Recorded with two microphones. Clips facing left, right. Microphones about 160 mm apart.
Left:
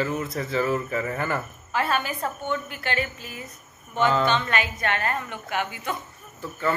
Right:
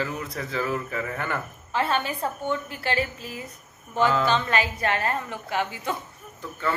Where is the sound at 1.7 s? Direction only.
25° right (ahead or behind).